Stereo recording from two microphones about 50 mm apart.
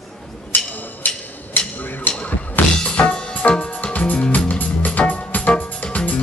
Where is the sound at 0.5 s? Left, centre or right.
Left.